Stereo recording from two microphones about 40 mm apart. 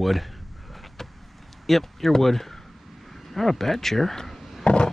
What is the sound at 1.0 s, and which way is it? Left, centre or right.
Vehicle, centre.